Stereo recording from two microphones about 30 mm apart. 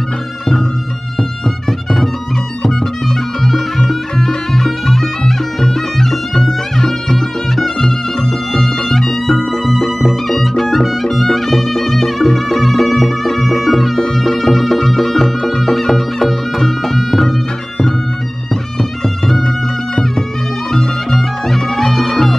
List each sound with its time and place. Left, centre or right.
2.6 s music: left
4.5 s music: centre
10.6 s music: centre
19.0 s music: centre
20.7 s music: centre